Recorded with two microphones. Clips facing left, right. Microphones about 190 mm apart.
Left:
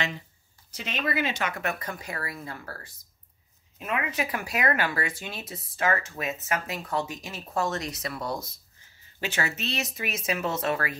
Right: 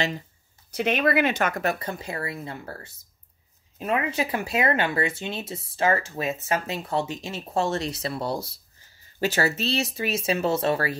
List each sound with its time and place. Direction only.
0.7 s speech: 60° right (ahead or behind)
1.6 s speech: 30° right (ahead or behind)